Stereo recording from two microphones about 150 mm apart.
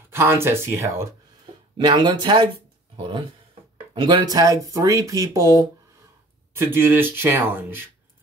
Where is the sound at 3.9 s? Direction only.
30° right (ahead or behind).